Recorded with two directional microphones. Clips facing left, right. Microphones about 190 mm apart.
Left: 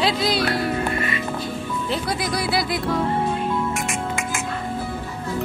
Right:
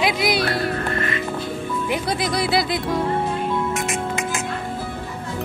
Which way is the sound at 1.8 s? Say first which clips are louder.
Right 2 dB; 20° right (ahead or behind).